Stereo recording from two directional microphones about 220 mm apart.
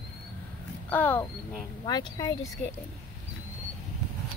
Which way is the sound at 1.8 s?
20° left (ahead or behind).